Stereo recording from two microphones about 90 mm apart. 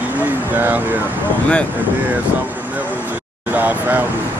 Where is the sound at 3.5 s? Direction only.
20° right (ahead or behind).